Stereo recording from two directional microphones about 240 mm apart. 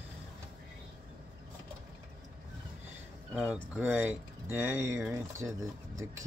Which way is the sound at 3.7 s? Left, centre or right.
Centre.